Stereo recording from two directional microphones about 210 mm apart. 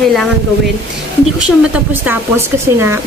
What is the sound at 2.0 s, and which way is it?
Speech, 10° right (ahead or behind).